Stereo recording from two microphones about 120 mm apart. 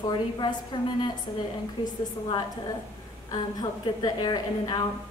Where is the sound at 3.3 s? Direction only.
35° left (ahead or behind).